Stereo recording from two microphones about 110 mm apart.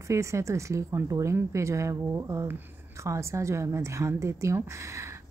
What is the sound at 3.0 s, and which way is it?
A woman's voice, 25° right (ahead or behind).